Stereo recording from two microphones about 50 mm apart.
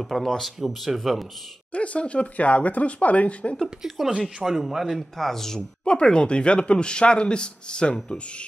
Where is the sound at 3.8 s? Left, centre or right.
Centre.